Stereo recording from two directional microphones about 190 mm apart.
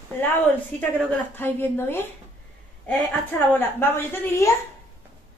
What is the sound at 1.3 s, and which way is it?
Speech, 10° left (ahead or behind).